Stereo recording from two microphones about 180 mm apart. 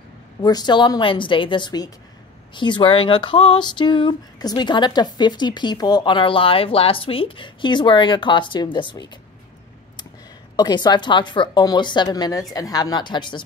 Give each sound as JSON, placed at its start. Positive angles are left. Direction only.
{"t": 0.4, "sound": "speech", "side_deg": 25}
{"t": 10.5, "sound": "speech", "side_deg": 25}